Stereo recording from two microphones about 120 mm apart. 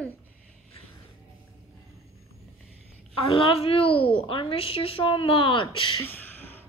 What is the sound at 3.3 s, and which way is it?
Babbling, 50° left (ahead or behind).